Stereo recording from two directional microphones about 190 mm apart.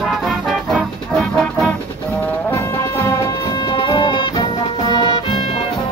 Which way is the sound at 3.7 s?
25° left (ahead or behind).